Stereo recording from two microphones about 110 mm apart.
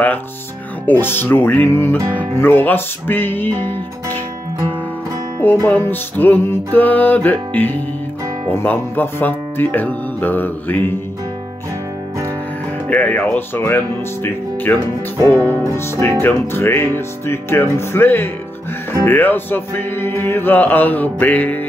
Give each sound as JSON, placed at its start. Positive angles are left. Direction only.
{"t": 0.8, "sound": "speech", "side_deg": 20}
{"t": 5.4, "sound": "music", "side_deg": 20}
{"t": 12.9, "sound": "music", "side_deg": 15}
{"t": 15.1, "sound": "speech", "side_deg": 20}
{"t": 19.0, "sound": "music", "side_deg": 15}